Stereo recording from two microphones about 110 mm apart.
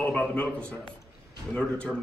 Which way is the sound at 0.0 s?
10° left (ahead or behind).